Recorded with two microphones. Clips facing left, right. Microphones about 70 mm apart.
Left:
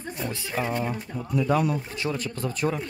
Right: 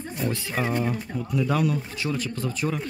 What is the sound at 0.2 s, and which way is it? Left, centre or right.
Speech, centre.